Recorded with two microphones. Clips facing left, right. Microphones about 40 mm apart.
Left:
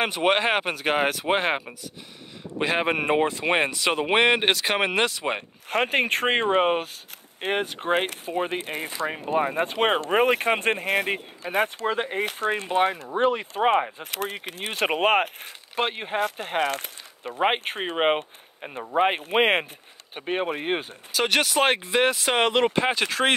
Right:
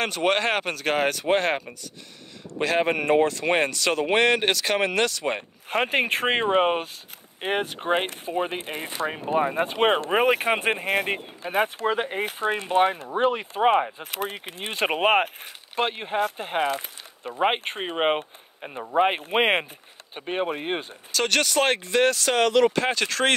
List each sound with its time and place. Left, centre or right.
0.0 s speech: centre
5.7 s speech: centre
16.3 s speech: centre
17.2 s speech: centre; by 22.8 s left
22.8 s speech: centre